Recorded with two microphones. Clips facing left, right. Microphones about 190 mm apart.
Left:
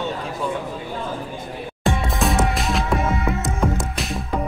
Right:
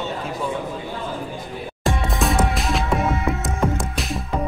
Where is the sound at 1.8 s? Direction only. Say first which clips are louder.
Left 1 dB; centre (ahead or behind).